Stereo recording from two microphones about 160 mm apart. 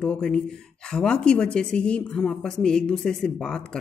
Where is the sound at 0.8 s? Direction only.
5° left (ahead or behind).